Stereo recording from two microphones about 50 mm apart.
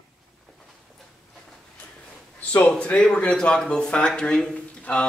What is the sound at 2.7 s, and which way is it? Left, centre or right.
A man's voice, centre.